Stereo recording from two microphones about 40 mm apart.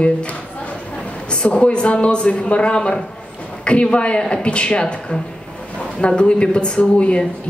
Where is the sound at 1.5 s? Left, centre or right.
Left.